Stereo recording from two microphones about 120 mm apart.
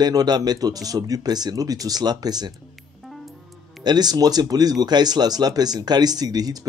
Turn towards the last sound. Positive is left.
turn(degrees=-35)  # may be behind; listen again after turning